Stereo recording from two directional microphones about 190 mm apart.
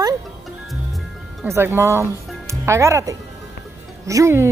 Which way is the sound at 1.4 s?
15° right (ahead or behind).